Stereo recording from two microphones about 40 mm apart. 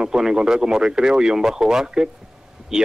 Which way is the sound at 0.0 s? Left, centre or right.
Centre.